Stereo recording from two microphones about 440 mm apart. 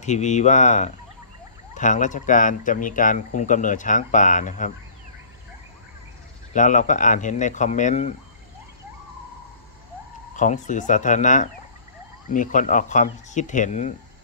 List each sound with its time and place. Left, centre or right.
0.0 s speech: centre
6.5 s speech: centre
10.3 s speech: centre